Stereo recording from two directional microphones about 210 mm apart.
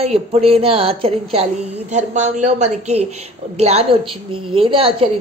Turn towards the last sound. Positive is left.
turn(degrees=-25)  # may be behind; listen again after turning